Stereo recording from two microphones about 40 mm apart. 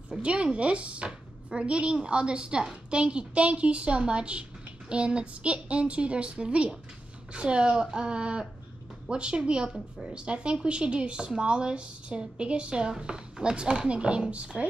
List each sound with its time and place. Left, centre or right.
0.2 s speech: right